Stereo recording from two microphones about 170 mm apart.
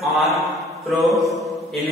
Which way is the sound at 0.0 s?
Centre (ahead or behind).